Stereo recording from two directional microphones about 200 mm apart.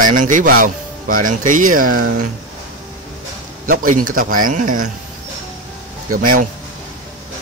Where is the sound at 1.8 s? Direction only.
90° right.